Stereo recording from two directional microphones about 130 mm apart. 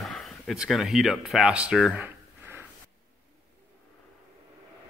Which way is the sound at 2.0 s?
15° right (ahead or behind).